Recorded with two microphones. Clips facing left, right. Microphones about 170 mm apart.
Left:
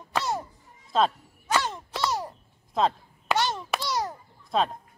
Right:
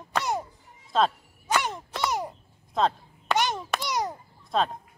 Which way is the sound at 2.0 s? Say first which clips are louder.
Even; 15° right (ahead or behind).